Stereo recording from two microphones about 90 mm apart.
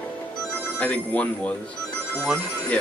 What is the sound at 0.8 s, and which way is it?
Speech, 15° left (ahead or behind).